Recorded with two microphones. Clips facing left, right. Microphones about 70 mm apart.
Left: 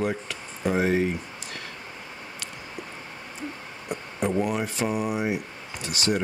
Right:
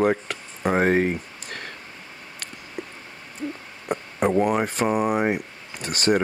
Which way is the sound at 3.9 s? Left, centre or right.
Right.